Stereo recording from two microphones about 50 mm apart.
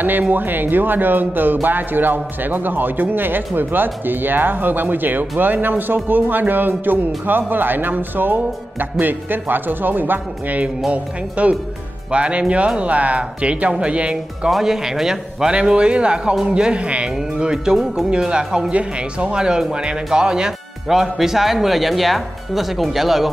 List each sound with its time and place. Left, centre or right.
0.3 s speech: right
10.9 s speech: right
14.5 s speech: centre